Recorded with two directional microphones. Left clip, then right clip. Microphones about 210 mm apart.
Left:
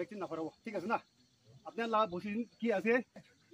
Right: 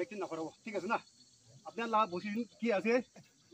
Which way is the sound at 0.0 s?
55° left (ahead or behind).